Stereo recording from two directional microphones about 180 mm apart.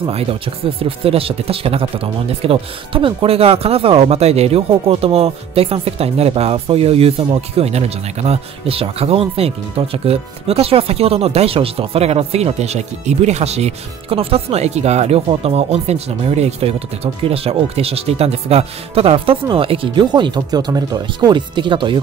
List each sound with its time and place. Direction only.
0.0 s speech: 35° right (ahead or behind)